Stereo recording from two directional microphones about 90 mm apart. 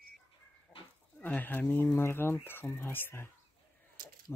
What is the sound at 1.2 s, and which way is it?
Speech, 20° left (ahead or behind).